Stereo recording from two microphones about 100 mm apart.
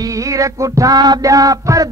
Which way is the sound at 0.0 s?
35° right (ahead or behind).